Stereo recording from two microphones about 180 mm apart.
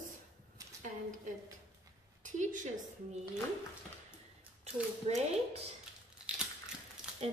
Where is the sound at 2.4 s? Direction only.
45° right (ahead or behind).